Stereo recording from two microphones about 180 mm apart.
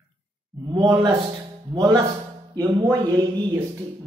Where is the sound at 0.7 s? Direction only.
25° right (ahead or behind).